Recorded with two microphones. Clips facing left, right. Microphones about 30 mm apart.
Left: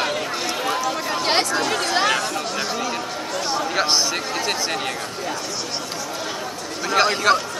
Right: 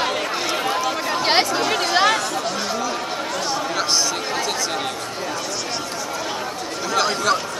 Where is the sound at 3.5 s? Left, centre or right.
Centre.